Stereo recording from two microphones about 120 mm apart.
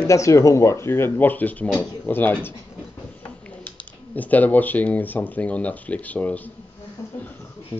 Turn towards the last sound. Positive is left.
turn(degrees=15)  # may be behind; listen again after turning